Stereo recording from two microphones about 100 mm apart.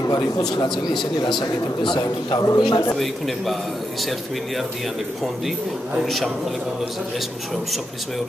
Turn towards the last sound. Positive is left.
turn(degrees=0)  # may be behind; listen again after turning